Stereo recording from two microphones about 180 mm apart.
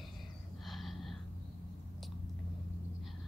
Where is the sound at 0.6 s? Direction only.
Centre (ahead or behind).